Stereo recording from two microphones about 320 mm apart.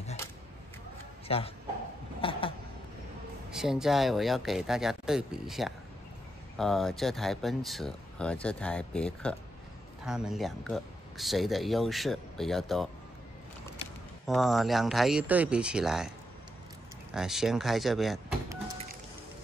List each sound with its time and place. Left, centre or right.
1.2 s a man's voice: centre
2.2 s a sound: centre
3.4 s speech: centre
14.2 s speech: centre
17.1 s speech: centre